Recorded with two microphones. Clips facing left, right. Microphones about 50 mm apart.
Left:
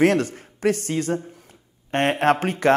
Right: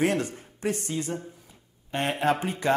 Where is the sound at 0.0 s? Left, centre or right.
Left.